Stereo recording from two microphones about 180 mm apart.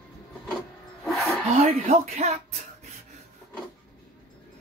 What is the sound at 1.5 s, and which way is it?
Speech, 35° right (ahead or behind).